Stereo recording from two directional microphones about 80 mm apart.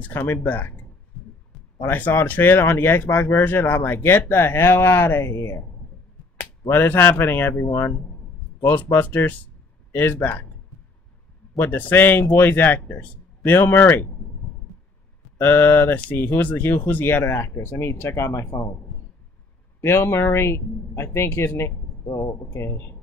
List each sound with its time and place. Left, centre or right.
0.0 s speech: left
1.9 s speech: left
6.7 s speech: left
8.9 s speech: left
11.5 s speech: left
15.3 s speech: left
18.5 s a man's voice: left
19.8 s speech: left
22.0 s speech: left
22.5 s speech: left